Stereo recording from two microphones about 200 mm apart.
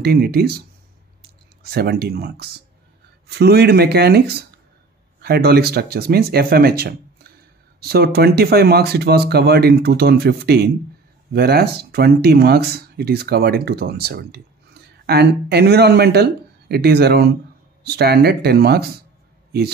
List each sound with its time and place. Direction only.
0.0 s speech: 50° right (ahead or behind)